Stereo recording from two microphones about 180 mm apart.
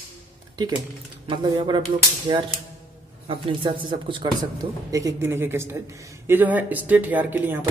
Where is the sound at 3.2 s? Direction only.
30° right (ahead or behind); by 7.6 s 10° right (ahead or behind).